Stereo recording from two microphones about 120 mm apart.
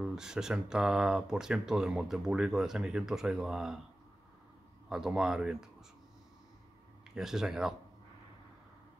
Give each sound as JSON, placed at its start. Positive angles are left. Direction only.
{"t": 0.0, "sound": "speech", "side_deg": -5}
{"t": 4.8, "sound": "speech", "side_deg": -5}
{"t": 7.2, "sound": "speech", "side_deg": -5}